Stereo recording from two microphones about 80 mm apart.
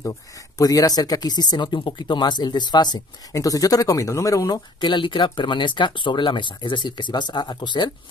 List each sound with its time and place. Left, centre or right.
0.6 s speech: left
3.3 s speech: left
4.7 s speech: left